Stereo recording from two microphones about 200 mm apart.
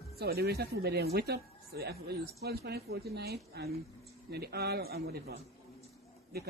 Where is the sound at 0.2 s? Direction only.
55° right (ahead or behind).